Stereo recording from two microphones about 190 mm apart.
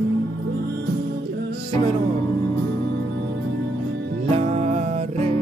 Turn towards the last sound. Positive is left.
turn(degrees=-35)  # may be behind; listen again after turning